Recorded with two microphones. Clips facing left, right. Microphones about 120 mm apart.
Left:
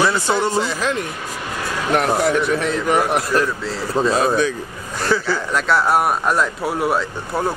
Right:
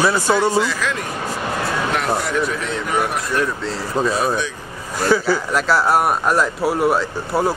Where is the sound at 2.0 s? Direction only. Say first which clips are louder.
Left 4 dB; 50° left (ahead or behind).